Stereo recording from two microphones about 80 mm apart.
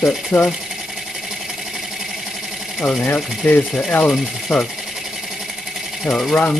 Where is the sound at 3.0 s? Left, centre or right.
Centre.